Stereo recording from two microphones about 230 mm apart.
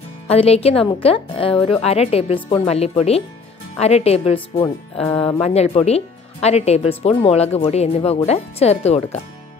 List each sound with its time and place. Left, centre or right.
0.3 s speech: left